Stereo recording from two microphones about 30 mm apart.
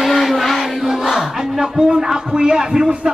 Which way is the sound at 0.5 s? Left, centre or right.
Centre.